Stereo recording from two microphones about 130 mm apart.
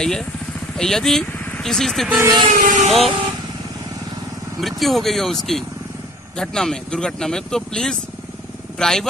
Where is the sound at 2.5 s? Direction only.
85° right.